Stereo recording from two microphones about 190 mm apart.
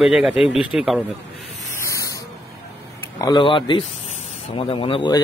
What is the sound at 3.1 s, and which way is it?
Speech, 25° left (ahead or behind).